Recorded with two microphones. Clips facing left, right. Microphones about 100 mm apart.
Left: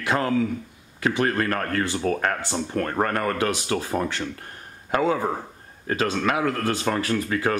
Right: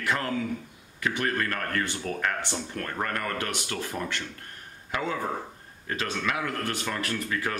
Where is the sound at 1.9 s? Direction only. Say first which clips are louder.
Left 9 dB; 90° left.